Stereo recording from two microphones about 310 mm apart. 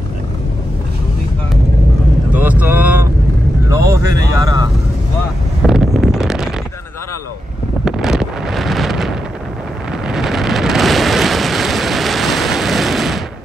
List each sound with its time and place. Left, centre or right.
2.3 s vehicle: centre
5.7 s wind noise: centre
7.8 s wind noise: centre
10.0 s a sound: centre